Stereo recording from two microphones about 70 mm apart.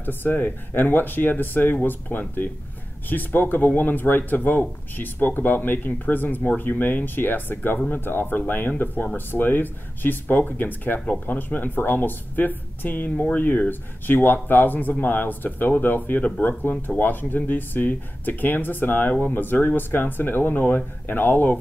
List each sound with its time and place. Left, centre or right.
0.0 s speech: left